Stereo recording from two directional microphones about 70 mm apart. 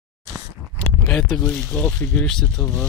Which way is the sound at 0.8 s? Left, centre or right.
Centre.